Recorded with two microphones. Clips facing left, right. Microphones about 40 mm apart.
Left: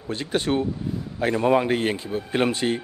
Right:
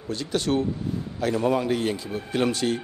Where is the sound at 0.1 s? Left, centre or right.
Left.